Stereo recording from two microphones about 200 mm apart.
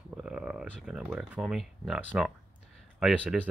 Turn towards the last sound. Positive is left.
turn(degrees=-5)  # may be behind; listen again after turning